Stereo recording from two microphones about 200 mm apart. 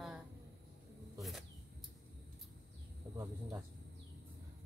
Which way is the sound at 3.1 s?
25° right (ahead or behind).